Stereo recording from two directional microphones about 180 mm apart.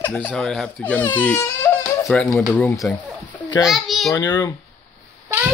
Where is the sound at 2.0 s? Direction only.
Centre (ahead or behind).